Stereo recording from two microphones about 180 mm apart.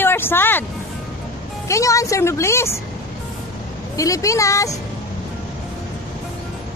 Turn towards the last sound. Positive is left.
turn(degrees=20)  # may be behind; listen again after turning